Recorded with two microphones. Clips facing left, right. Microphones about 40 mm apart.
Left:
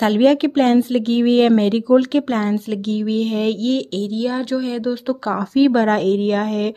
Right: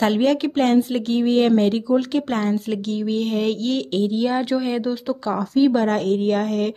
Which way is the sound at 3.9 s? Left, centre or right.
Centre.